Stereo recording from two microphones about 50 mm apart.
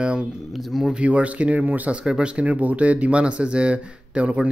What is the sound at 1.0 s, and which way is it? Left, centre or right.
Speech, right.